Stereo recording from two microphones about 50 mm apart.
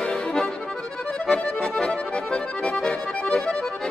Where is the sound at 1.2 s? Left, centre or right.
Centre.